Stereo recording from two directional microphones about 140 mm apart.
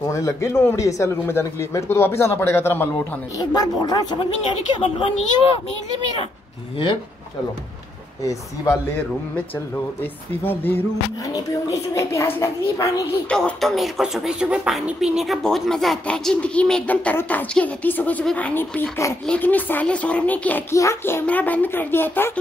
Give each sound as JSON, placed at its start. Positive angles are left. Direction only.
{"t": 0.0, "sound": "speech", "side_deg": 20}
{"t": 3.3, "sound": "speech", "side_deg": 30}
{"t": 8.2, "sound": "speech", "side_deg": 25}
{"t": 10.4, "sound": "speech", "side_deg": 15}
{"t": 13.3, "sound": "speech", "side_deg": 5}